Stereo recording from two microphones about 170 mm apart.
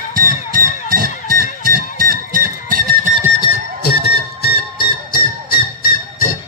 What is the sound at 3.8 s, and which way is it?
Music, 70° left (ahead or behind).